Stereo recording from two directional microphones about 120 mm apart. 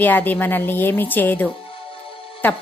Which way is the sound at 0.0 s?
15° left (ahead or behind).